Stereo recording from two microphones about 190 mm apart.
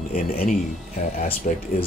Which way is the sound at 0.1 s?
45° left (ahead or behind).